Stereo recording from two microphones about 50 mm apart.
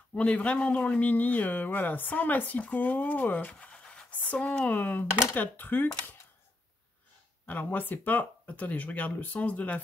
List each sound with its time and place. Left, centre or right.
0.1 s speech: left
3.5 s scratch: left
4.6 s speech: left
7.4 s speech: left